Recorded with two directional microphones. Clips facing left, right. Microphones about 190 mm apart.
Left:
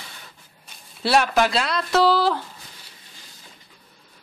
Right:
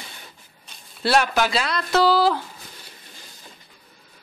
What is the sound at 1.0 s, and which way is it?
Speech, centre (ahead or behind).